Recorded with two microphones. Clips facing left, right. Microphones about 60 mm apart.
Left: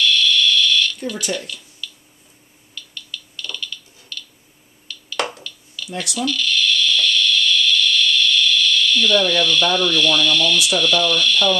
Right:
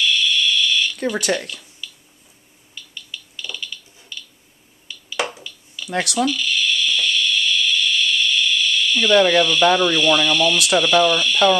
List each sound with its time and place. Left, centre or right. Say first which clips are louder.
0.0 s fire alarm: left 2 dB; centre
1.2 s speech: right 4 dB; right
1.8 s a sound: left 1 dB; centre
5.9 s speech: right 6 dB; right
6.2 s a sound: even; centre
10.7 s speech: right 3 dB; centre